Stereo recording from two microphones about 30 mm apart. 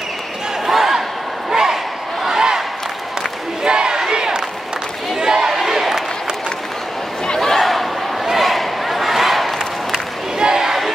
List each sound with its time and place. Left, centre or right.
0.7 s battle cry: centre
1.5 s crowd: centre
2.2 s battle cry: centre
3.6 s crowd: right; by 6.0 s centre
7.3 s battle cry: centre
8.3 s a sound: centre
10.4 s crowd: centre